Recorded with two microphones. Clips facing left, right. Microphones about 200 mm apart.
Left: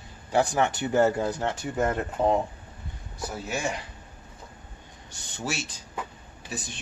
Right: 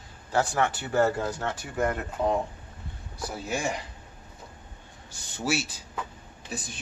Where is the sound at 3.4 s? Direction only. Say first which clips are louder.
Right 1 dB; centre (ahead or behind).